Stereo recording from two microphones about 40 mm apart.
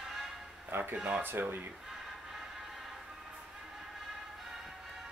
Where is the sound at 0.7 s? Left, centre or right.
Right.